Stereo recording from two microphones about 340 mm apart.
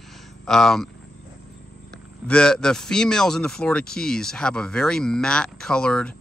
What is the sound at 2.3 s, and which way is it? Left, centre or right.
Speech, centre.